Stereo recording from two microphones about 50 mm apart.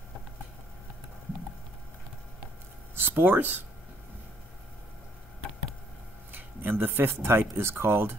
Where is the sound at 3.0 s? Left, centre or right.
Right.